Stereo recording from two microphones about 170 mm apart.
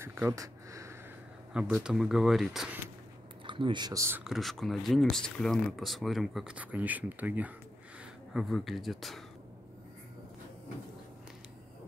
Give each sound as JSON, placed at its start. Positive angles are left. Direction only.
{"t": 0.0, "sound": "a sound", "side_deg": -15}
{"t": 1.5, "sound": "speech", "side_deg": -5}
{"t": 3.4, "sound": "speech", "side_deg": -30}
{"t": 4.2, "sound": "speech", "side_deg": 0}